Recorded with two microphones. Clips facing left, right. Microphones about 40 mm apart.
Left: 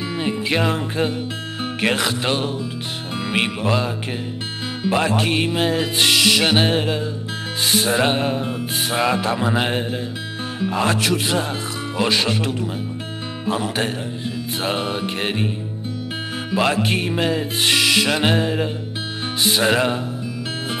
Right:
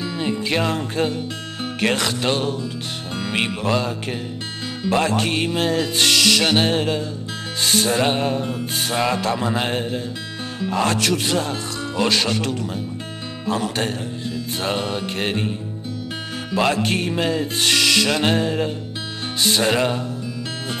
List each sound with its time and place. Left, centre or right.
0.1 s music: centre
16.5 s music: centre